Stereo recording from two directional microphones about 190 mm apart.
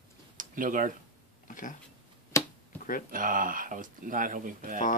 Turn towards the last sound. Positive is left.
turn(degrees=-45)  # may be behind; listen again after turning